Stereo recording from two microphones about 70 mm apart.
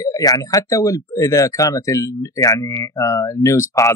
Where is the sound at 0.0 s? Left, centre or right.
Left.